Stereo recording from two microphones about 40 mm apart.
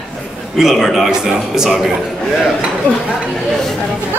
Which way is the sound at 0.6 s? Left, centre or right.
Centre.